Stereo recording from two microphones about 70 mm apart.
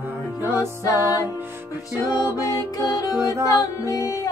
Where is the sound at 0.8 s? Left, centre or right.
Left.